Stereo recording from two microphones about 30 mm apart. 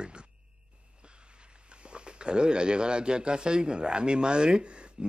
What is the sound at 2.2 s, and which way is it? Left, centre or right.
A man's voice, right.